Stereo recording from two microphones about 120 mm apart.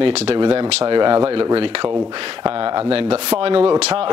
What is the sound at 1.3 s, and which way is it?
Speech, 50° right (ahead or behind).